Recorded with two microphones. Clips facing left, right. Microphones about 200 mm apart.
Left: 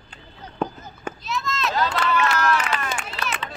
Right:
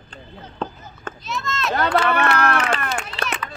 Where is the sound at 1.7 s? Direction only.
60° right (ahead or behind).